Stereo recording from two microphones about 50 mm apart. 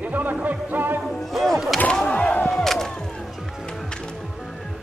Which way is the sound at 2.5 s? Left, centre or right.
Centre.